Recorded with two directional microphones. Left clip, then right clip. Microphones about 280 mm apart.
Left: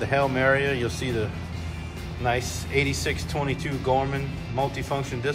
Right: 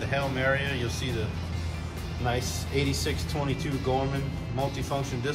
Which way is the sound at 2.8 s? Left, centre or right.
Centre.